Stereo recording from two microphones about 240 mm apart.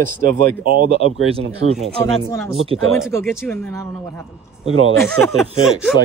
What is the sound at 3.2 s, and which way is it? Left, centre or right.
Speech, centre.